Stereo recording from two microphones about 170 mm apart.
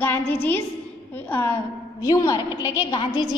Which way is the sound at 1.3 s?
15° left (ahead or behind).